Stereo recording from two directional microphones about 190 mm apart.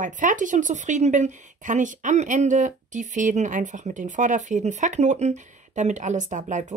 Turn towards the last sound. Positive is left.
turn(degrees=-40)  # may be behind; listen again after turning